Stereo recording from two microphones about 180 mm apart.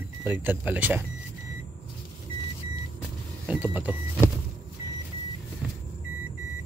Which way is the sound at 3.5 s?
10° right (ahead or behind).